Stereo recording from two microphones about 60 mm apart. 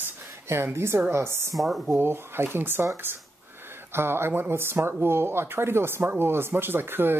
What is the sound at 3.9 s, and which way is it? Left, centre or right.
Speech, right.